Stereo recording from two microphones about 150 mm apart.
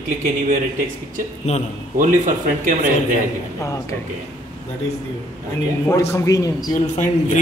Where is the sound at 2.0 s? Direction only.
60° right (ahead or behind).